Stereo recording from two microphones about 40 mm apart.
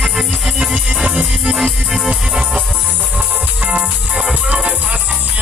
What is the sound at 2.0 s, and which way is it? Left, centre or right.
Music, right.